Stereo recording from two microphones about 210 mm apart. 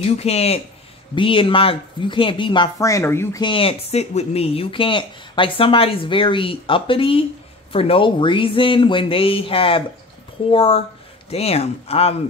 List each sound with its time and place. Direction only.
0.1 s speech: 30° left (ahead or behind); by 3.4 s 10° left (ahead or behind)
3.4 s speech: 25° left (ahead or behind)